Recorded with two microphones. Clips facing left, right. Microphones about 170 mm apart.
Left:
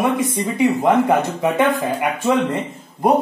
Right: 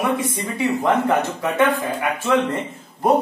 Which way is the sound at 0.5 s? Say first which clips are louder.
Left 4 dB; 15° left (ahead or behind).